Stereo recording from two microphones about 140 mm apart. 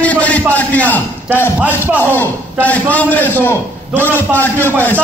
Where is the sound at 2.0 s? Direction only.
10° left (ahead or behind).